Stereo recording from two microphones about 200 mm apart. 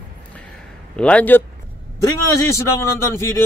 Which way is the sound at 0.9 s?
5° left (ahead or behind).